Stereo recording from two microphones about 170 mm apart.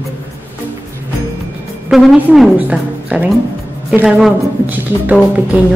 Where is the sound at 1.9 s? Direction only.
Centre (ahead or behind).